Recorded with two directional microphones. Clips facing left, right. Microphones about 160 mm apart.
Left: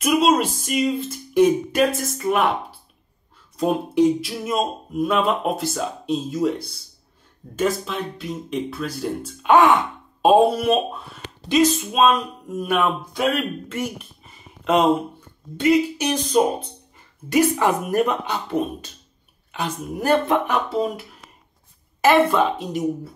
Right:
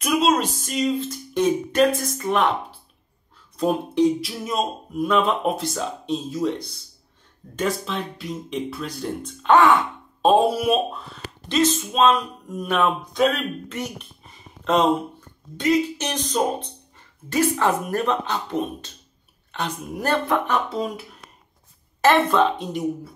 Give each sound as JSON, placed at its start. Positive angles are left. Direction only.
{"t": 0.0, "sound": "speech", "side_deg": 0}
{"t": 3.5, "sound": "speech", "side_deg": 5}
{"t": 7.5, "sound": "speech", "side_deg": 5}
{"t": 10.5, "sound": "speech", "side_deg": -5}
{"t": 11.4, "sound": "speech", "side_deg": 10}
{"t": 22.0, "sound": "speech", "side_deg": 5}